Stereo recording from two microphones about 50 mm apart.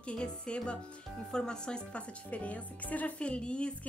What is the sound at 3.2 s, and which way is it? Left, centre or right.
Speech, left.